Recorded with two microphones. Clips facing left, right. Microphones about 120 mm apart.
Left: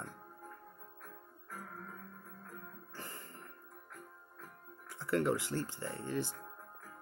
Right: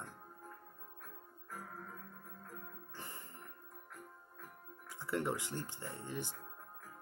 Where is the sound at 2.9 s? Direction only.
20° right (ahead or behind).